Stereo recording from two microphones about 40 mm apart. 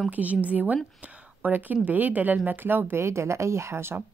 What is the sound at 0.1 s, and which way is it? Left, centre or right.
Speech, right.